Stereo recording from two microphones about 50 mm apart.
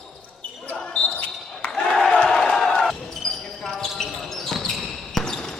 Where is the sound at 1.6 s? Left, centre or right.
Centre.